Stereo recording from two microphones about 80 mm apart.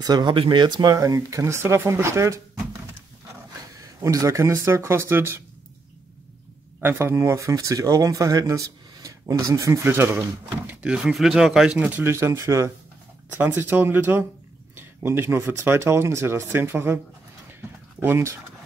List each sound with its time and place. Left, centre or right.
0.0 s speech: right
0.9 s speech: right
4.0 s speech: right
6.8 s speech: right
10.7 s speech: centre
11.1 s speech: centre
11.8 s speech: right
13.3 s speech: right
18.0 s speech: right